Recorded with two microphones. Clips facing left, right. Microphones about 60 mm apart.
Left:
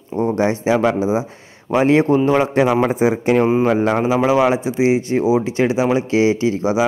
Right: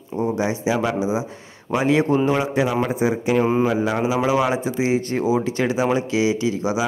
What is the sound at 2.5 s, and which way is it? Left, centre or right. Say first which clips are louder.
Speech: left 5 dB; left.